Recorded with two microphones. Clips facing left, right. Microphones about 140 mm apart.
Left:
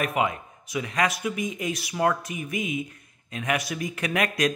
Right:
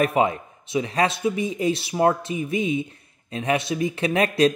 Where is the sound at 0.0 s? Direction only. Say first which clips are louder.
Right 5 dB; 30° right (ahead or behind).